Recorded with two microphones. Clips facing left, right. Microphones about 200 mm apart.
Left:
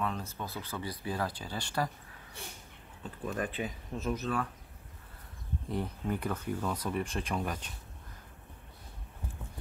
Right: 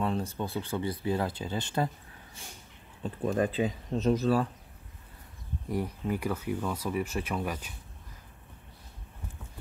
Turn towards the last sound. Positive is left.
turn(degrees=-5)  # may be behind; listen again after turning